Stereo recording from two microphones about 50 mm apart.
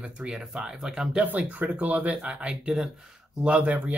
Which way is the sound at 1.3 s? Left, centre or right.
Right.